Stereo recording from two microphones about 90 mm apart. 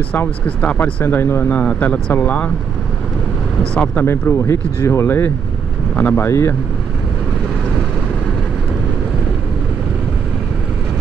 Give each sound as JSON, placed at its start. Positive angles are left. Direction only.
{"t": 0.1, "sound": "speech", "side_deg": 20}
{"t": 1.6, "sound": "speech", "side_deg": 15}
{"t": 3.7, "sound": "speech", "side_deg": 10}
{"t": 4.0, "sound": "speech", "side_deg": 30}